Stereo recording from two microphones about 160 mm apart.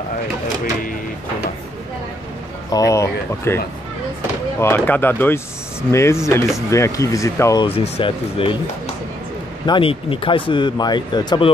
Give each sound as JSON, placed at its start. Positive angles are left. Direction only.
{"t": 2.7, "sound": "speech", "side_deg": 20}
{"t": 7.6, "sound": "speech", "side_deg": 35}